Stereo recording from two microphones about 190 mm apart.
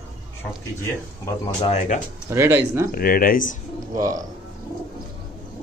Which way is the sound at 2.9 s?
50° left (ahead or behind).